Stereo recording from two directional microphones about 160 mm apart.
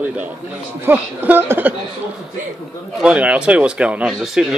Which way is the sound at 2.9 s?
5° right (ahead or behind).